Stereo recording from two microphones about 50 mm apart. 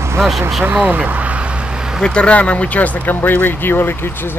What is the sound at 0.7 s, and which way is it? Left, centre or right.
Speech, right.